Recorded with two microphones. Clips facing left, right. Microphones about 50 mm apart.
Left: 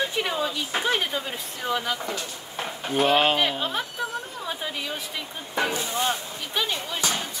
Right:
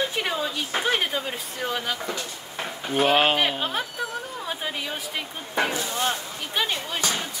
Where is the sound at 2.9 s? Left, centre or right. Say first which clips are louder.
Even; centre.